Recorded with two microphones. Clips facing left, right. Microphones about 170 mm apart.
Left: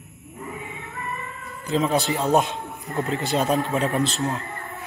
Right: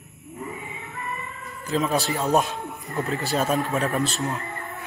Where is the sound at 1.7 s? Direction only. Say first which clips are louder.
Left 2 dB; 25° left (ahead or behind).